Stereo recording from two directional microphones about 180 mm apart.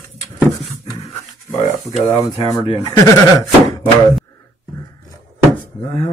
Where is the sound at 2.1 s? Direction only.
25° left (ahead or behind).